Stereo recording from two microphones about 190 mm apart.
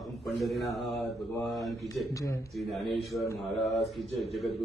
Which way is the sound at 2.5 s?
Centre (ahead or behind).